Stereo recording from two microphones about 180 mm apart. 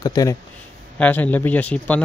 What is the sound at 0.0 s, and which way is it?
Speech, 20° left (ahead or behind).